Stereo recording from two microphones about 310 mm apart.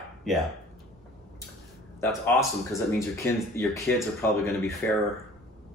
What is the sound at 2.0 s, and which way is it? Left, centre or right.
Speech, centre.